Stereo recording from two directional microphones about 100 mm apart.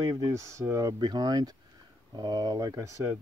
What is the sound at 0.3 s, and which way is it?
Speech, 30° right (ahead or behind).